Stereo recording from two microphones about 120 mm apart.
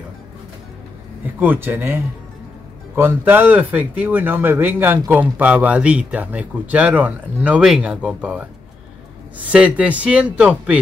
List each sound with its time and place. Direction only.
1.4 s speech: 15° right (ahead or behind)
3.0 s speech: 15° right (ahead or behind)
9.5 s speech: 10° right (ahead or behind)